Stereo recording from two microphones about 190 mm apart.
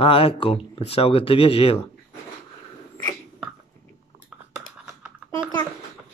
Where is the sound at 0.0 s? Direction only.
30° left (ahead or behind).